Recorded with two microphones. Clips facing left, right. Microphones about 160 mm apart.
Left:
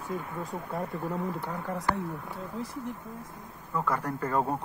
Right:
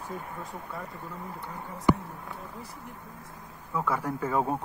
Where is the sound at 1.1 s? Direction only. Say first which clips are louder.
Left 7 dB; 75° left (ahead or behind).